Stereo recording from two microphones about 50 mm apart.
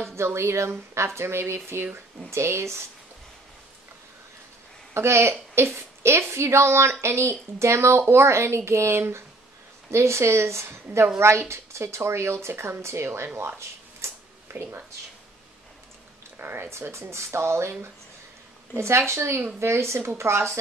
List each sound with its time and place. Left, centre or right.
0.1 s a woman's voice: right
4.9 s a woman's voice: right
13.4 s a sound: right
14.5 s speech: right
16.3 s a woman's voice: right
18.8 s a woman's voice: right